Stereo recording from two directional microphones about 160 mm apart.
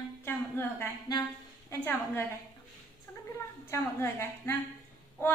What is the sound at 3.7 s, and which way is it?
Speech, 15° left (ahead or behind).